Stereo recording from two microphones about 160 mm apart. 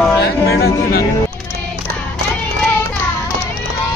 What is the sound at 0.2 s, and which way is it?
Music, 75° left (ahead or behind).